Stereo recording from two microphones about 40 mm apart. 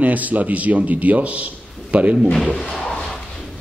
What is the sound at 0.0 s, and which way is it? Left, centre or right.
Speech, right.